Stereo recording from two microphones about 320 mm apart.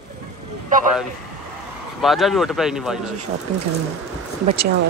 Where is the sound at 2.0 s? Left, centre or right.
Centre.